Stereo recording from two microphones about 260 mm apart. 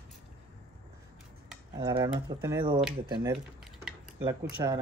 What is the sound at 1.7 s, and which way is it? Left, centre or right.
Speech, centre.